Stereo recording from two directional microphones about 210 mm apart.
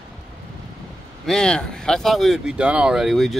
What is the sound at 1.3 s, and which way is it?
Speech, 5° left (ahead or behind).